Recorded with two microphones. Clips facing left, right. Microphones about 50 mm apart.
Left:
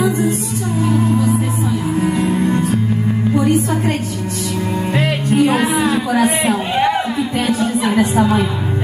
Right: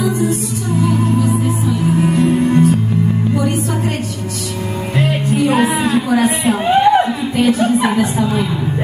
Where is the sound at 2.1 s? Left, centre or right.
Left.